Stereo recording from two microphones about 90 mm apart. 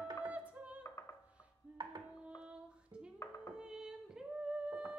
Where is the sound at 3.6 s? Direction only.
5° right (ahead or behind).